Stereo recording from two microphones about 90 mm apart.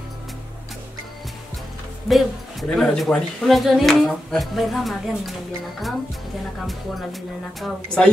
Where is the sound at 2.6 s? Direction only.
5° left (ahead or behind).